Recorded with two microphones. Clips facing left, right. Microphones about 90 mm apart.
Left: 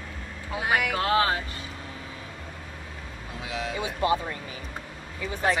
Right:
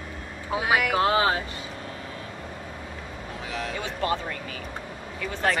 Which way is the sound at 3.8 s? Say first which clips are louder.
Left 3 dB; 20° left (ahead or behind).